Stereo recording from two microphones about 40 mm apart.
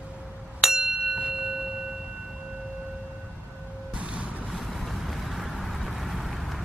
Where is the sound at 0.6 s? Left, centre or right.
Centre.